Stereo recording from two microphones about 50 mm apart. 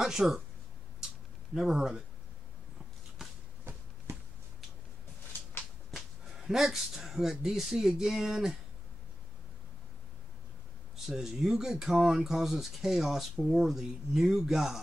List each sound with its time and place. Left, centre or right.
0.0 s speech: centre
1.7 s speech: centre
4.1 s a sound: right
5.9 s speech: centre
11.1 s speech: centre